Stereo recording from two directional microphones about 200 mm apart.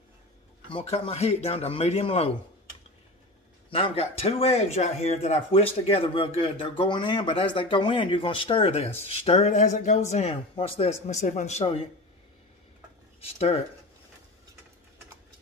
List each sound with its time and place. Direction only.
0.7 s speech: 30° left (ahead or behind)
3.7 s speech: 30° left (ahead or behind)
13.2 s speech: 30° left (ahead or behind)